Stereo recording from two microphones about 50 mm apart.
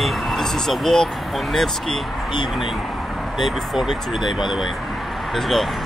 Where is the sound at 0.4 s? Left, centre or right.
Centre.